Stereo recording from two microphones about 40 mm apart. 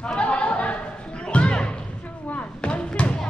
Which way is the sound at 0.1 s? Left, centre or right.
Left.